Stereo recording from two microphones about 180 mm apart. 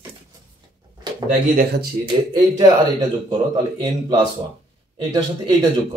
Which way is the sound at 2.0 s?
20° right (ahead or behind).